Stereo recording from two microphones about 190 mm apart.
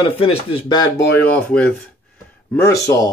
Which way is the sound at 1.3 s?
5° left (ahead or behind).